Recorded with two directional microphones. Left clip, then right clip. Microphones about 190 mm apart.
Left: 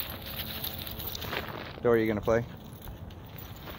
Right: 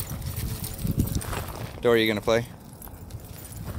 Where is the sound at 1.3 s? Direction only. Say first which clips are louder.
Right 1 dB; 15° right (ahead or behind).